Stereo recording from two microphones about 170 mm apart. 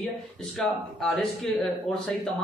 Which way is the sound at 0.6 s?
Centre (ahead or behind).